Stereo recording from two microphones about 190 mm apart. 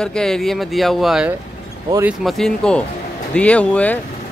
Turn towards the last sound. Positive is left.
turn(degrees=5)  # may be behind; listen again after turning